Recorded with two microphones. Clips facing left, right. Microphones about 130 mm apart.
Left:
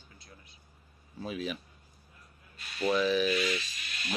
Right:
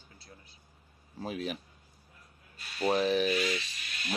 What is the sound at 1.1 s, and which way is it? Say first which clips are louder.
Speech: even; 65° right (ahead or behind).